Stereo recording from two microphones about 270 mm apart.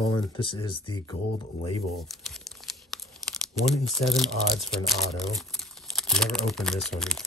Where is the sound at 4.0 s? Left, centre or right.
Centre.